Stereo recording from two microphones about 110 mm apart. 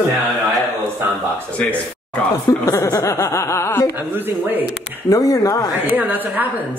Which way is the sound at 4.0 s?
20° right (ahead or behind).